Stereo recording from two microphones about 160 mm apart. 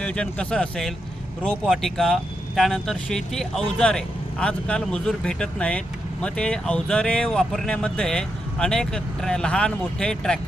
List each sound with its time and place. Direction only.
0.0 s speech: 5° left (ahead or behind)